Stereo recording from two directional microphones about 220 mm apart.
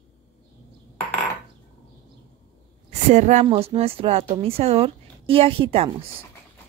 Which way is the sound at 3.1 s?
30° right (ahead or behind).